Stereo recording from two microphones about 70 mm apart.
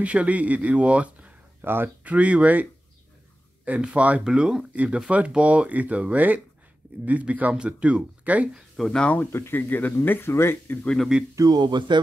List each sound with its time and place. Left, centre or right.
0.0 s speech: centre
3.8 s speech: centre
8.5 s speech: centre
9.0 s speech: left
11.3 s speech: right